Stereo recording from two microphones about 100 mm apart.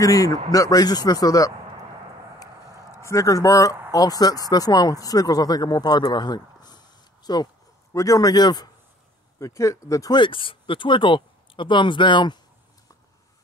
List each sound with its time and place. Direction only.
0.0 s speech: 35° left (ahead or behind)
3.0 s speech: 30° left (ahead or behind)
9.4 s speech: 30° left (ahead or behind)
10.1 s speech: 55° left (ahead or behind)